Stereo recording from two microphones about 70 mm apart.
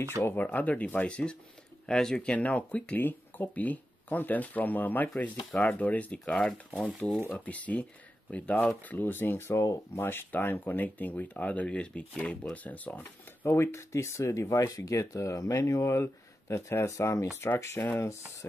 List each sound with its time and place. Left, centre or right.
0.0 s speech: left; by 2.3 s centre
2.3 s speech: left
13.6 s speech: left